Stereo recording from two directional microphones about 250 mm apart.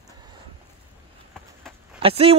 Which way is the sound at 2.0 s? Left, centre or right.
Right.